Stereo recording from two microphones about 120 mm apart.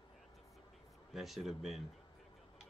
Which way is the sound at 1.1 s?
Centre (ahead or behind).